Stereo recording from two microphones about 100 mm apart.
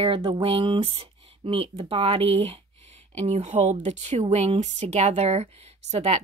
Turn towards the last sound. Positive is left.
turn(degrees=-90)